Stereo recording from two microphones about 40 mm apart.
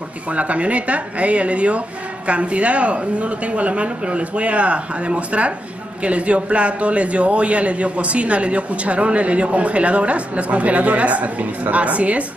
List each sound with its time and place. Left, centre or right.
0.3 s a man's voice: right